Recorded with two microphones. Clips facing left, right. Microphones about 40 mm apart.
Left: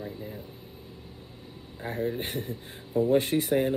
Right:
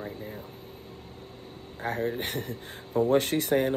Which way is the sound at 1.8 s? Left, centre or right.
Right.